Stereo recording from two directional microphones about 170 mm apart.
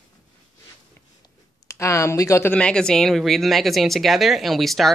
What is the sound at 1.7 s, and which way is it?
Speech, 15° left (ahead or behind).